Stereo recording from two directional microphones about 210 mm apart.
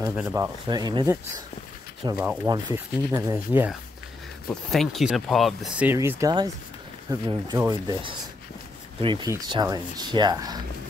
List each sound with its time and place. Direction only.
0.1 s speech: 10° right (ahead or behind)
4.5 s speech: centre (ahead or behind); by 10.6 s 20° right (ahead or behind)